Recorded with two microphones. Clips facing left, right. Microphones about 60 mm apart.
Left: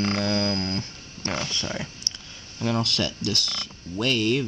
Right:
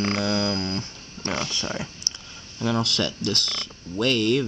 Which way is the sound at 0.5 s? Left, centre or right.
Centre.